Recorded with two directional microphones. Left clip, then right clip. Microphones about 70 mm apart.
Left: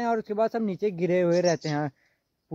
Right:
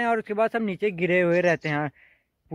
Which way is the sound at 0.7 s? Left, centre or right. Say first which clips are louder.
Right 2 dB; centre.